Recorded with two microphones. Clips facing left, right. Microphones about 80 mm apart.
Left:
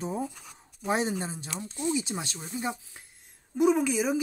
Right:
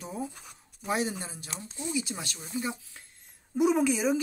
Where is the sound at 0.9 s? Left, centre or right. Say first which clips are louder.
Left 3 dB; left.